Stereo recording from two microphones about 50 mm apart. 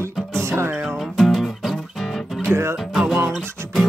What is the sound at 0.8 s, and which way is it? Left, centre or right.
Music, centre.